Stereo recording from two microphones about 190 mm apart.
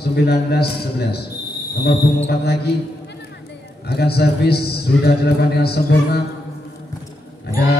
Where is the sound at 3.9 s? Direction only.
55° left (ahead or behind).